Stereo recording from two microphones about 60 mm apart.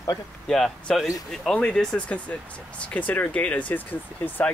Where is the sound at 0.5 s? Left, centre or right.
Centre.